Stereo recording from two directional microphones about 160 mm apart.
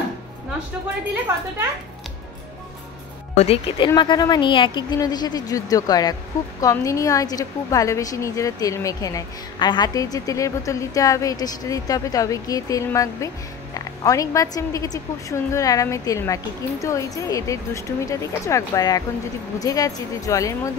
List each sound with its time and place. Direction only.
3.3 s a woman's voice: 35° left (ahead or behind); by 20.7 s 20° left (ahead or behind)